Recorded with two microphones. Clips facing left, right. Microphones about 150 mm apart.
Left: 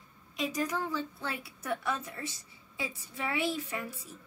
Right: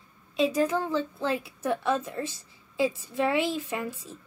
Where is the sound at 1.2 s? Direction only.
90° right.